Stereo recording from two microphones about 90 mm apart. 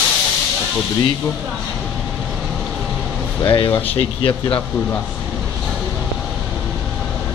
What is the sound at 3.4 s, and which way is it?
Speech, 75° left (ahead or behind).